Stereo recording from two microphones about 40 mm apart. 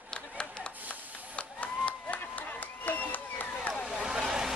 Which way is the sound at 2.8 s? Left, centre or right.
Left.